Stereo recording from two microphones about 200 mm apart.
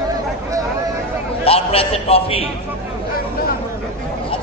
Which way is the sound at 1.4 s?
30° left (ahead or behind).